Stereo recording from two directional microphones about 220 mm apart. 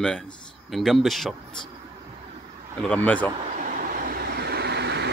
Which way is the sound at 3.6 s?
40° right (ahead or behind).